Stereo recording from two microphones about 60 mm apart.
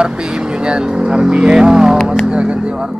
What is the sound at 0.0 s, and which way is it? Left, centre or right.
Speech, centre.